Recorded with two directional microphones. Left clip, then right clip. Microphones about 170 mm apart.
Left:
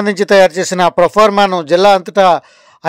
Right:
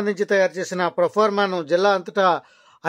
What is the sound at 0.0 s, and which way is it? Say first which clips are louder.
Speech: left 11 dB; 45° left (ahead or behind).